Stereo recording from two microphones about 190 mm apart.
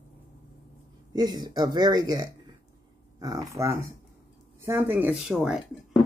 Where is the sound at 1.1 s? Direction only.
20° right (ahead or behind).